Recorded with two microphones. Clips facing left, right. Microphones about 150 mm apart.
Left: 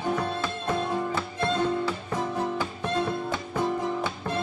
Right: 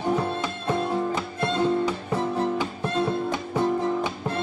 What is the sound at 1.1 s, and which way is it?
Music, 15° right (ahead or behind).